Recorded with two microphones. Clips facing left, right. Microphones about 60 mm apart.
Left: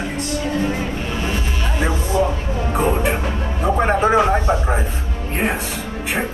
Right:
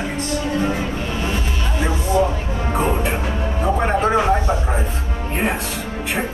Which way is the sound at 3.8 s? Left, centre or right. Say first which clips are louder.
Left 3 dB; centre.